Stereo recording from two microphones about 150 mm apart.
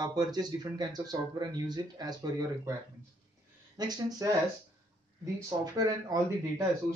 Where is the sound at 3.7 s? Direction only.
25° right (ahead or behind).